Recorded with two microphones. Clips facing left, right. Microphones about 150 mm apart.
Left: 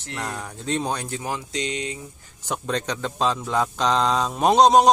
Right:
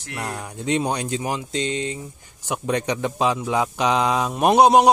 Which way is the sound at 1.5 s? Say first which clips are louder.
Right 3 dB; 30° right (ahead or behind).